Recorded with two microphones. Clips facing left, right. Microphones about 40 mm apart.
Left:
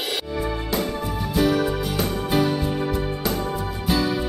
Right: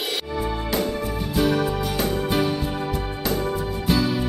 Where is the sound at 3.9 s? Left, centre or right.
Centre.